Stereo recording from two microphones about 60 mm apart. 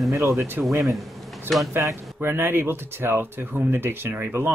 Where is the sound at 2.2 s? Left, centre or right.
Right.